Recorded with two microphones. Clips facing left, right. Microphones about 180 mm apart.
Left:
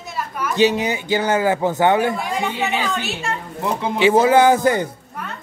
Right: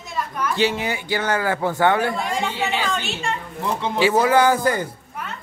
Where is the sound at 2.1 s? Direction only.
5° left (ahead or behind).